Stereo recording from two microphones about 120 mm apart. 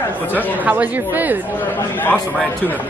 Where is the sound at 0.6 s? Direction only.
15° right (ahead or behind).